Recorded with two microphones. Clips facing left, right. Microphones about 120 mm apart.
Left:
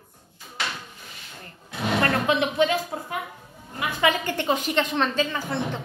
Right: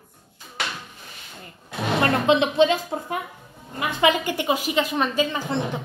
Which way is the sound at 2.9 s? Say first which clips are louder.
Right 4 dB; 25° right (ahead or behind).